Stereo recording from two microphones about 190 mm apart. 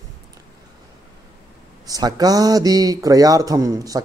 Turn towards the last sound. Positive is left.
turn(degrees=-20)  # may be behind; listen again after turning